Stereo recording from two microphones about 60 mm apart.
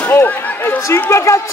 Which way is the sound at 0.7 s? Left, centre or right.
Left.